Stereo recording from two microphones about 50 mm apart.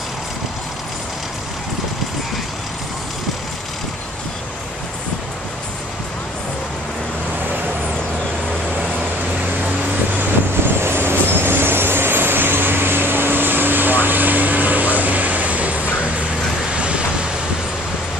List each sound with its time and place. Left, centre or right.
10.8 s vehicle: right